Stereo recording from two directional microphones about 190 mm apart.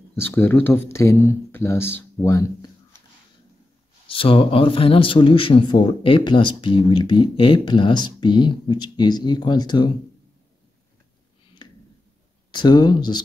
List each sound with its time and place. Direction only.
0.1 s speech: 10° left (ahead or behind)
4.1 s a man's voice: 30° left (ahead or behind)
11.6 s clicking: 20° left (ahead or behind)
12.4 s a man's voice: 20° left (ahead or behind)